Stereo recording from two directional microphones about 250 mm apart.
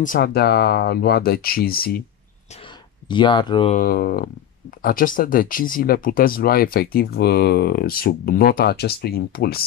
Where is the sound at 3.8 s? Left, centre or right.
Left.